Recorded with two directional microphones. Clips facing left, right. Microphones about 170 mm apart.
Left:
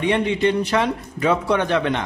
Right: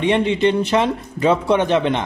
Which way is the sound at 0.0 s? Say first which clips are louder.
Right 3 dB; 25° right (ahead or behind).